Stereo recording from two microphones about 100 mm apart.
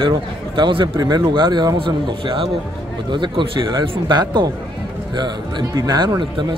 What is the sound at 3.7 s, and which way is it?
A man's voice, 45° right (ahead or behind).